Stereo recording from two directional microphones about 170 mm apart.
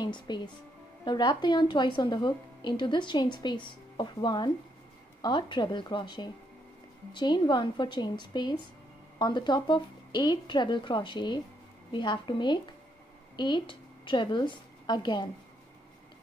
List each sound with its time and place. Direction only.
0.0 s a woman's voice: 25° left (ahead or behind)